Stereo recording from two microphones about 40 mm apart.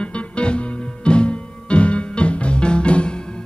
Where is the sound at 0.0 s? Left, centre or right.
Left.